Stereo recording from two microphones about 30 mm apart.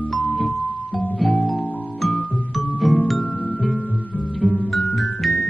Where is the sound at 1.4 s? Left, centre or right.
Centre.